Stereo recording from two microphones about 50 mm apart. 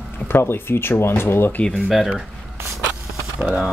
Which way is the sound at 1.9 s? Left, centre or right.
Centre.